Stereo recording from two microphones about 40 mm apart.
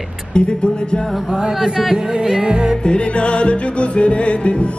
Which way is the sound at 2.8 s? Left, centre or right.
Left.